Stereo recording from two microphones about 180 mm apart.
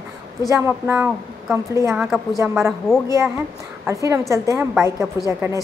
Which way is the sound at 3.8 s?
15° right (ahead or behind).